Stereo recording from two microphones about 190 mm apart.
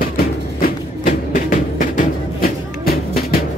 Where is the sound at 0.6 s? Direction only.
45° left (ahead or behind).